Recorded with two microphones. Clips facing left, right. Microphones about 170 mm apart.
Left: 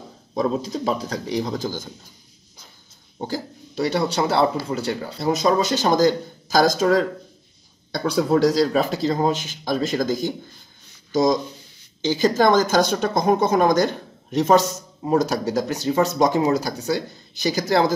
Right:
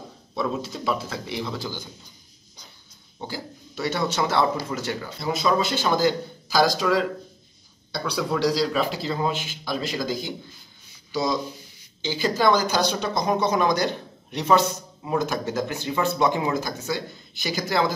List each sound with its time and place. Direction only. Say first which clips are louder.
0.3 s speech: left 5 dB; 35° left (ahead or behind)
3.2 s a man's voice: left 6 dB; 40° left (ahead or behind)